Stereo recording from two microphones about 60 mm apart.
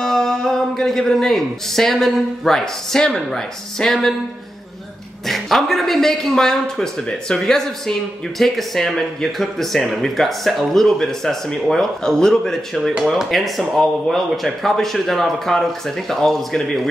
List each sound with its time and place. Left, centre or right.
0.0 s speech: centre
5.2 s speech: centre